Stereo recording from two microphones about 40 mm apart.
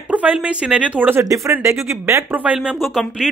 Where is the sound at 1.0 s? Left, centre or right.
Right.